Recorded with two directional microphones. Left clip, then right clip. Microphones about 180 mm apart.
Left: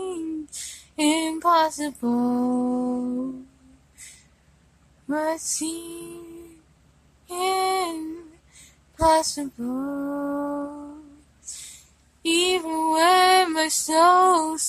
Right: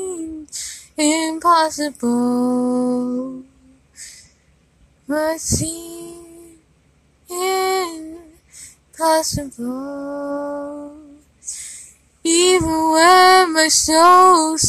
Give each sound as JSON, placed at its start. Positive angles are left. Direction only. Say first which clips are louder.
{"t": 0.0, "sound": "a sound", "louder": "right 3 dB", "side_deg": -15}
{"t": 1.4, "sound": "female singing", "louder": "right 5 dB", "side_deg": -15}
{"t": 5.0, "sound": "female singing", "louder": "right 5 dB", "side_deg": -10}
{"t": 7.2, "sound": "female singing", "louder": "right 4 dB", "side_deg": -15}
{"t": 11.7, "sound": "music", "louder": "right 9 dB", "side_deg": -20}
{"t": 12.8, "sound": "female singing", "louder": "right 7 dB", "side_deg": -25}